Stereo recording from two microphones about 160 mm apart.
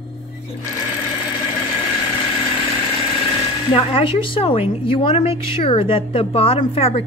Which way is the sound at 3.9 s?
35° left (ahead or behind).